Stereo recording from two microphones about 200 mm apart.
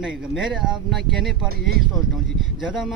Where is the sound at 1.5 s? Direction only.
50° right (ahead or behind).